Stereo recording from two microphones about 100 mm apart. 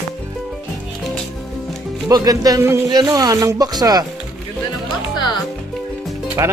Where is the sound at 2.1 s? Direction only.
40° right (ahead or behind).